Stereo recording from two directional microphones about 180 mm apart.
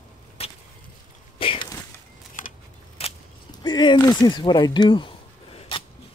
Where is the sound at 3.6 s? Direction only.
25° left (ahead or behind).